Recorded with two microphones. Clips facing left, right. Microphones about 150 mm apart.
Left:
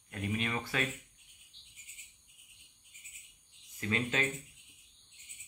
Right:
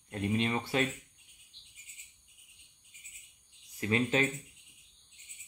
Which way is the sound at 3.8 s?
30° right (ahead or behind).